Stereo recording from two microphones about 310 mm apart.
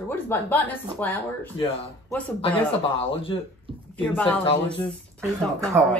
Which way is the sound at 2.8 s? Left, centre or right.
Centre.